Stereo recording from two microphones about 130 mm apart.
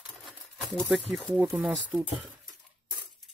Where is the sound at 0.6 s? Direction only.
Centre (ahead or behind).